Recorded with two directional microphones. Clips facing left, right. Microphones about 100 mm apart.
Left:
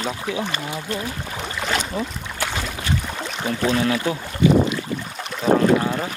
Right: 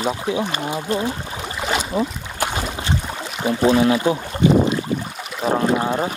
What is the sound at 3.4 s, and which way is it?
Speech, 20° right (ahead or behind).